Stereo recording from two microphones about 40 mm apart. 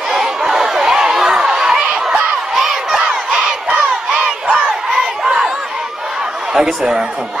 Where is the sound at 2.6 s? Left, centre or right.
Centre.